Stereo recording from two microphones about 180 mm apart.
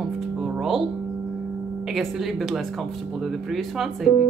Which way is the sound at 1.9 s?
Centre (ahead or behind).